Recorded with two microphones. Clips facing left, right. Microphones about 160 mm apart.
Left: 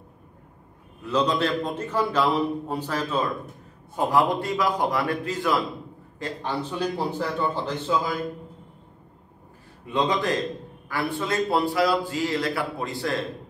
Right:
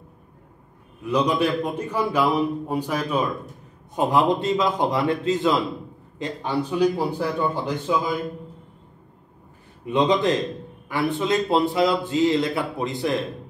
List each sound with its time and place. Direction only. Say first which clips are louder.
1.0 s a man's voice: right 2 dB; 10° right (ahead or behind)
9.8 s a man's voice: right 4 dB; 20° right (ahead or behind)